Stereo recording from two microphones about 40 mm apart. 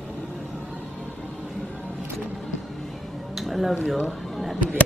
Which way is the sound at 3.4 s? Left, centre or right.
Centre.